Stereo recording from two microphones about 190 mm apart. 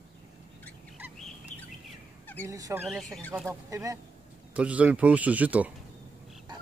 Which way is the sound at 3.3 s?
15° right (ahead or behind).